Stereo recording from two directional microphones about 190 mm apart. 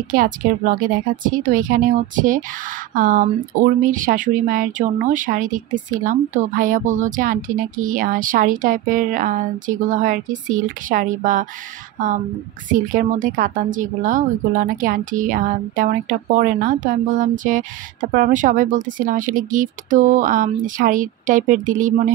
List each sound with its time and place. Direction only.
0.1 s speech: 50° right (ahead or behind)